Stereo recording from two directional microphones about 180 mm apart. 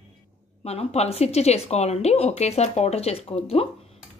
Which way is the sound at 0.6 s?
35° left (ahead or behind).